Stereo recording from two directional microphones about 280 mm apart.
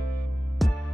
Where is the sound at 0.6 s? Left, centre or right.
Centre.